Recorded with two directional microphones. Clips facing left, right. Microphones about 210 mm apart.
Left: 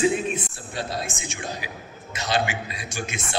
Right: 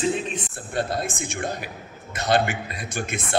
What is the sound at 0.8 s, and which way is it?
A man's voice, 55° right (ahead or behind).